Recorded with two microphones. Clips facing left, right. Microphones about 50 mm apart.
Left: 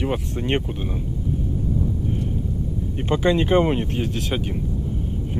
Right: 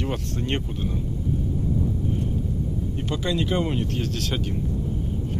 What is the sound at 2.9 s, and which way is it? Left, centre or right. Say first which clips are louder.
Speech: left 9 dB; left.